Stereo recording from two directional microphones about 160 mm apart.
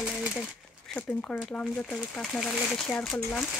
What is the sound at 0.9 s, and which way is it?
Speech, 10° left (ahead or behind).